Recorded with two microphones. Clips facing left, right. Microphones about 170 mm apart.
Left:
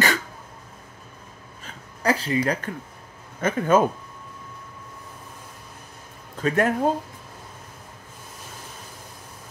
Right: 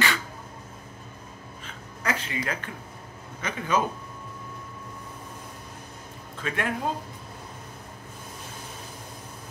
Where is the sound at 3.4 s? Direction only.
50° left (ahead or behind).